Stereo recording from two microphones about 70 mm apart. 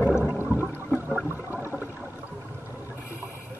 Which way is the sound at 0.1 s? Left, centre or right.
Centre.